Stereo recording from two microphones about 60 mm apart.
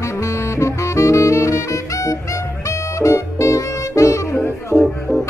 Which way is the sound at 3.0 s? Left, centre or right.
Left.